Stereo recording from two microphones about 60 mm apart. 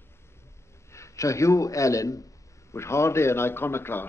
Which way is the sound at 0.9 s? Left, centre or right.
Left.